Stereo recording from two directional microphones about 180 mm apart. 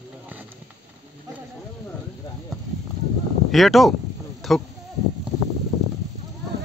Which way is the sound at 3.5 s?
Centre (ahead or behind).